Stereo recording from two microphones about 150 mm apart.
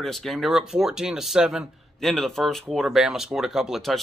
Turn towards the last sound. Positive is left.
turn(degrees=0)  # may be behind; listen again after turning